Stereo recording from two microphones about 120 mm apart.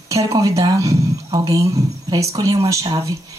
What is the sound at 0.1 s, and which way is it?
Speech, 25° right (ahead or behind).